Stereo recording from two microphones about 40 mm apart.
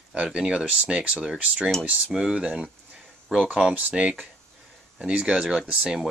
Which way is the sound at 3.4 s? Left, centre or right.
Right.